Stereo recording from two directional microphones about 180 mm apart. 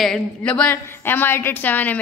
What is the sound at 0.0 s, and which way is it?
A woman's voice, 5° left (ahead or behind).